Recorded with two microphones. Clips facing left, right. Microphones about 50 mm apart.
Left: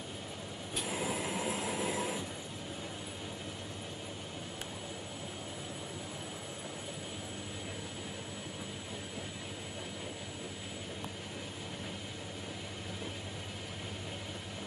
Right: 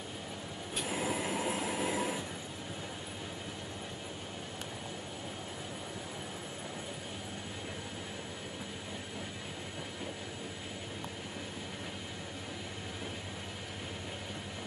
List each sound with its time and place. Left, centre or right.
0.7 s vehicle: centre